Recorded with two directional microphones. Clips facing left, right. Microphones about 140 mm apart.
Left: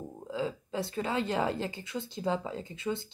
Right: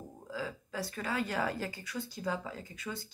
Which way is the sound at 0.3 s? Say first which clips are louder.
Left 6 dB; 25° left (ahead or behind).